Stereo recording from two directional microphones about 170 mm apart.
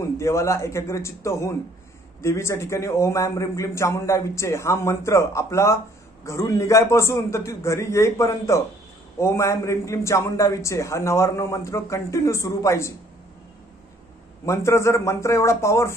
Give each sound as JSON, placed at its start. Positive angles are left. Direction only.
{"t": 0.0, "sound": "a man's voice", "side_deg": 15}
{"t": 14.4, "sound": "a man's voice", "side_deg": 15}